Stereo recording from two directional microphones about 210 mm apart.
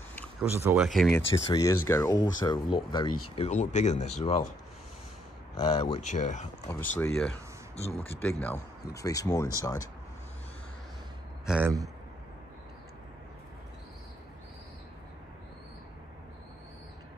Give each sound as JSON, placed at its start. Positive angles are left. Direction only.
{"t": 0.4, "sound": "speech", "side_deg": -10}
{"t": 0.8, "sound": "speech", "side_deg": 0}
{"t": 1.5, "sound": "speech", "side_deg": 15}
{"t": 5.6, "sound": "speech", "side_deg": 30}
{"t": 6.7, "sound": "speech", "side_deg": 10}
{"t": 11.4, "sound": "speech", "side_deg": -5}